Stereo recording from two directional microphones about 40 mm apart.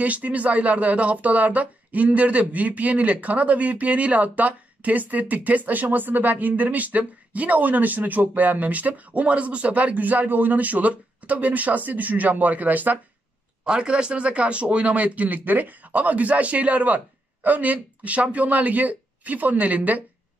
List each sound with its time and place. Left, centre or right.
0.0 s speech: right
13.7 s speech: right